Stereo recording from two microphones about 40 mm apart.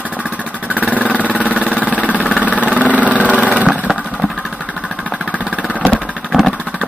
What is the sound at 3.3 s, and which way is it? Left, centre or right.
Vehicle, right.